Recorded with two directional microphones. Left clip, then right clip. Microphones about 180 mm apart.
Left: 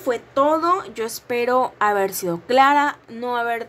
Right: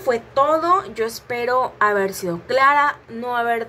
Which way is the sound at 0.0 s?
45° left (ahead or behind).